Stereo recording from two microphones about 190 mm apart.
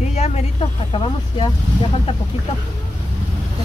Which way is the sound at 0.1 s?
35° left (ahead or behind).